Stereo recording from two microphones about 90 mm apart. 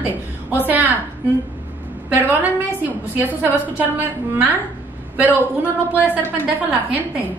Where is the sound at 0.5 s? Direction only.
20° right (ahead or behind).